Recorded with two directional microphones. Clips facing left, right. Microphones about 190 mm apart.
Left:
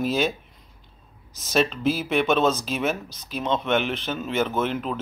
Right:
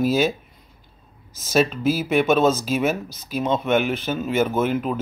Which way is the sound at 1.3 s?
5° right (ahead or behind).